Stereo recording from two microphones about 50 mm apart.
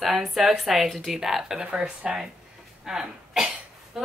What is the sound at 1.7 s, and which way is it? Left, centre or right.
Speech, right.